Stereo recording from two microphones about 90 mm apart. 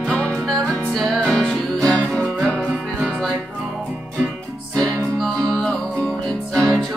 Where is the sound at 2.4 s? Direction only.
15° left (ahead or behind).